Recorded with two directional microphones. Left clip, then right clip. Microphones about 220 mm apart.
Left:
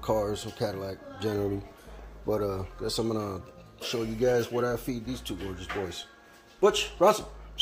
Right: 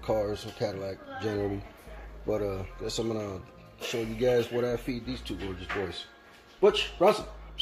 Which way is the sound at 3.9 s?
10° left (ahead or behind).